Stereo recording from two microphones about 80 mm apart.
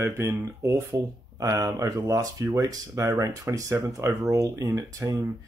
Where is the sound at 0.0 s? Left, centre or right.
Right.